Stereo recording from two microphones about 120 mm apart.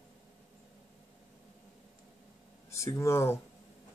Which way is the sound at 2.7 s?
25° left (ahead or behind).